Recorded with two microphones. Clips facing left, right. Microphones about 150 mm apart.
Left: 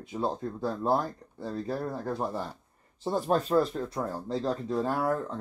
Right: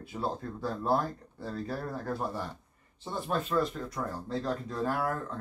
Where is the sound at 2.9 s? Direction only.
40° left (ahead or behind).